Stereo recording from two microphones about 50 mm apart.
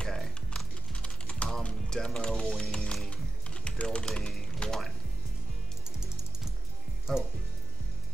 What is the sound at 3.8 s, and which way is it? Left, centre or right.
Speech, left.